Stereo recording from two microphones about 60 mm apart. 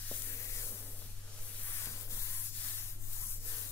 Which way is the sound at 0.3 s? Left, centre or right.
Left.